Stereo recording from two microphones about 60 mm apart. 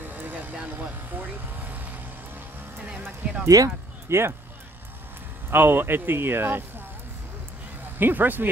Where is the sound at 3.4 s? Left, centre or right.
Right.